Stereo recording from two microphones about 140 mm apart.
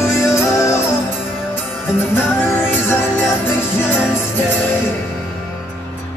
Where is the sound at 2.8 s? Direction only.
15° left (ahead or behind).